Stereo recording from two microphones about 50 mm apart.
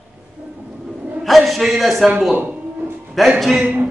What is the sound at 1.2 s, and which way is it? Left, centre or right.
Speech, centre.